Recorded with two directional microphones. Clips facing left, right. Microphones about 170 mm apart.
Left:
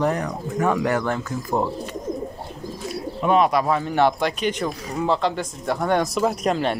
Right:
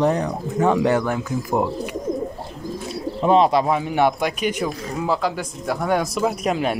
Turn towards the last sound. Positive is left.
turn(degrees=-10)  # may be behind; listen again after turning